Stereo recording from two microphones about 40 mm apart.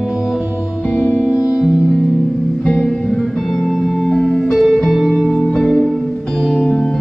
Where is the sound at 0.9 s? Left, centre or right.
Left.